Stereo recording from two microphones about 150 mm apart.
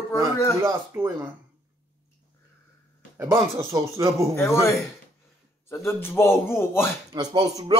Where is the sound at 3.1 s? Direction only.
15° right (ahead or behind).